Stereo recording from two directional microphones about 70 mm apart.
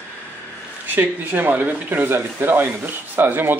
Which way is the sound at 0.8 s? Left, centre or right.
Right.